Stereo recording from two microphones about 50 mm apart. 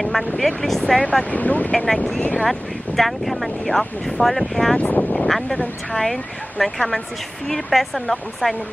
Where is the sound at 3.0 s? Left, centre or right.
Centre.